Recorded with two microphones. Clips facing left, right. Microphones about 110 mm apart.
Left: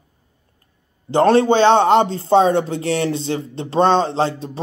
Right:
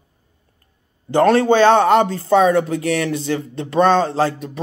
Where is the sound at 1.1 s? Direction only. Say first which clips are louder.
Even; 25° left (ahead or behind).